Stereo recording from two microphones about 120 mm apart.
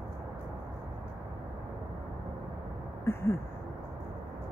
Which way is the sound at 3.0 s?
20° left (ahead or behind).